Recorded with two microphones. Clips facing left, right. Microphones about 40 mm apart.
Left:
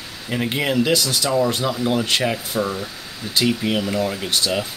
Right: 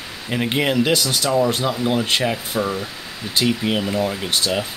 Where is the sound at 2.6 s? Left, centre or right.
Centre.